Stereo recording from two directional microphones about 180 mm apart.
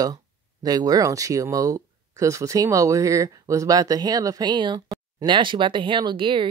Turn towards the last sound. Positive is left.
turn(degrees=-30)  # may be behind; listen again after turning